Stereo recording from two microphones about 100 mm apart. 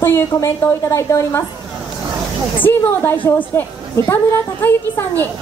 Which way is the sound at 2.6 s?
20° left (ahead or behind).